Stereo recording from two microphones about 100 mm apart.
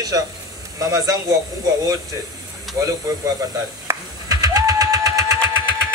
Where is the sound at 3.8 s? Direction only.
40° right (ahead or behind).